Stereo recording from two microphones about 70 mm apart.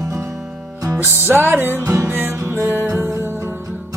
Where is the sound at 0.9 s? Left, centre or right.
Right.